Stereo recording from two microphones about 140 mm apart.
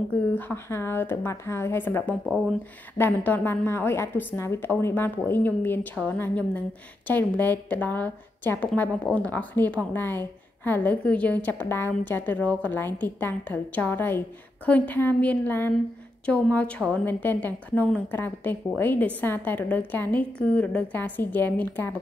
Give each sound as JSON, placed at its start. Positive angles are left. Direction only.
{"t": 0.3, "sound": "a woman's voice", "side_deg": 10}